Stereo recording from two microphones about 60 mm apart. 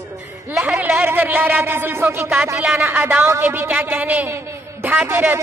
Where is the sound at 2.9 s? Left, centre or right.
Right.